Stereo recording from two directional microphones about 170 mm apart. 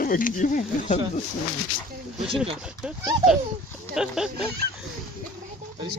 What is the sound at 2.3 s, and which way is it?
Speech, 5° right (ahead or behind).